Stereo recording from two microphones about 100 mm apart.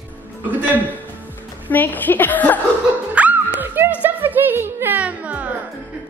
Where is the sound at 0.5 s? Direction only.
15° right (ahead or behind).